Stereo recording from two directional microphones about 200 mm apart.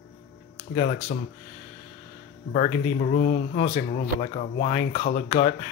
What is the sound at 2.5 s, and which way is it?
Speech, 35° left (ahead or behind).